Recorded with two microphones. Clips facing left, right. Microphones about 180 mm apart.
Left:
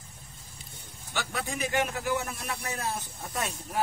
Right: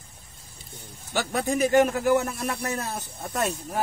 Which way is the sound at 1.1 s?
40° right (ahead or behind).